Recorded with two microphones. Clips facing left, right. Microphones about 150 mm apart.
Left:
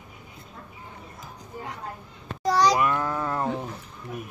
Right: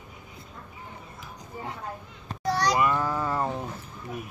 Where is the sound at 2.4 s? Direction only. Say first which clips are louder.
Left 5 dB; 90° left.